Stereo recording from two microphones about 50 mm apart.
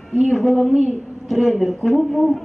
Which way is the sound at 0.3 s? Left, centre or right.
Centre.